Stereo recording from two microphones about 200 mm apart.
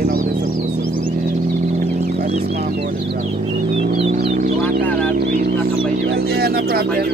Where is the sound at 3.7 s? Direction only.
30° right (ahead or behind).